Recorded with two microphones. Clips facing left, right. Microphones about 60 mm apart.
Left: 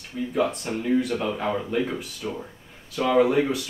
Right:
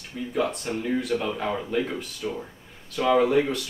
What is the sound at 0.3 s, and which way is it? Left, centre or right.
Speech, centre.